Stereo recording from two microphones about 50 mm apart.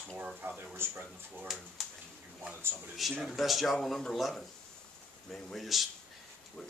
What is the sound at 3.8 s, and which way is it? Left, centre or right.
Speech, centre.